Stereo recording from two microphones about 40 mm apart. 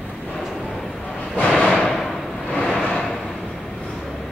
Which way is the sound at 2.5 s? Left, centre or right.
Left.